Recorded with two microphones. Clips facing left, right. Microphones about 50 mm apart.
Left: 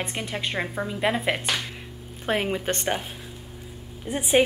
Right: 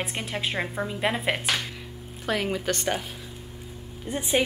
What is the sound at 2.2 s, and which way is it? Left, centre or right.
Speech, left.